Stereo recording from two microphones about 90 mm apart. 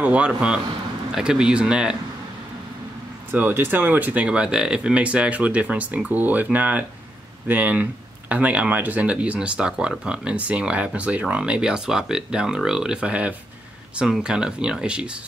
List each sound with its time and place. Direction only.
0.0 s speech: 10° right (ahead or behind)
3.3 s speech: 20° right (ahead or behind)